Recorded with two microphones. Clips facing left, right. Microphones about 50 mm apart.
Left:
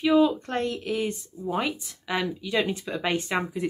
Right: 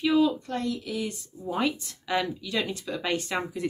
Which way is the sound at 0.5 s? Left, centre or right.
Left.